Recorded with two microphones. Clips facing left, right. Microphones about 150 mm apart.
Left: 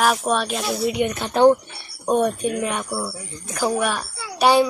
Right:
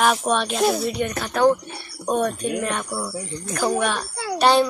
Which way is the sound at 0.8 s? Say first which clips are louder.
Left 3 dB; 15° left (ahead or behind).